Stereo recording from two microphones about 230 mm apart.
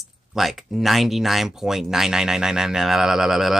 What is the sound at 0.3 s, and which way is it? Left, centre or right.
Speech, centre.